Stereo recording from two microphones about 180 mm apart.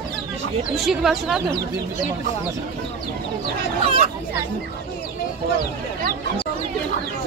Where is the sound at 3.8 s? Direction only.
30° right (ahead or behind).